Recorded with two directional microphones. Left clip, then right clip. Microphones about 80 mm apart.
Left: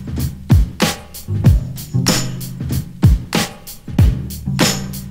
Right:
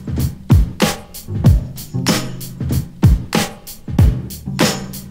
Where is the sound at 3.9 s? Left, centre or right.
Left.